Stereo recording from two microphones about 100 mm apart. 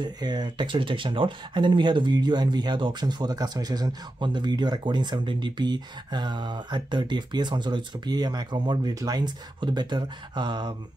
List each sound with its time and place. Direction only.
0.0 s speech: 45° right (ahead or behind)